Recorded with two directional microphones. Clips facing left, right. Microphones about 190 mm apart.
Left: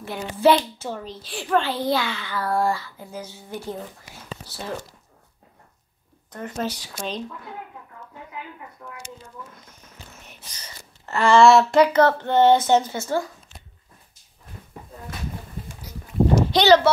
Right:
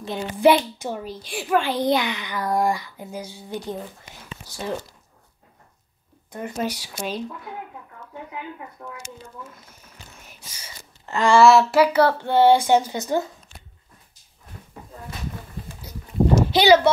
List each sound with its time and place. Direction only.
0.0 s a child's voice: 15° right (ahead or behind)
6.3 s a child's voice: 10° right (ahead or behind)
9.7 s a sound: 5° right (ahead or behind)
11.4 s a child's voice: 5° right (ahead or behind)
16.5 s a child's voice: 10° right (ahead or behind)